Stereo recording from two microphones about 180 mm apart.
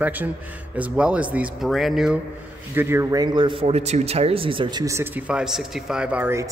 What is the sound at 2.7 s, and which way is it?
A man's voice, 15° right (ahead or behind).